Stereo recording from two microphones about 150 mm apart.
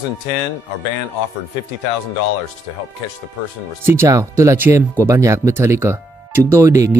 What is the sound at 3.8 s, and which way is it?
Speech, 15° right (ahead or behind).